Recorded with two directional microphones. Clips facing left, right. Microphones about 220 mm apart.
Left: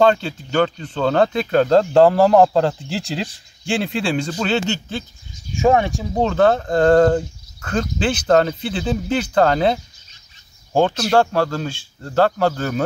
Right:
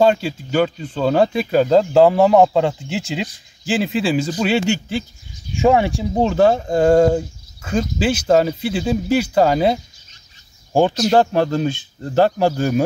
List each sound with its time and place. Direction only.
0.0 s speech: 5° right (ahead or behind)